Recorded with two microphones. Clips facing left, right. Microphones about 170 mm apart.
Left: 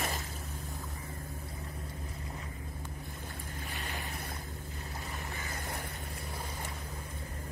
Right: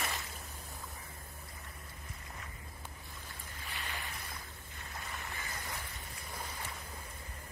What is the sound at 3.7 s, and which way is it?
Boat, 45° left (ahead or behind).